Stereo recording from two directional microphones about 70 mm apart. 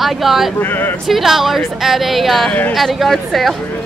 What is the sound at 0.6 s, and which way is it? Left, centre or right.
Speech, left.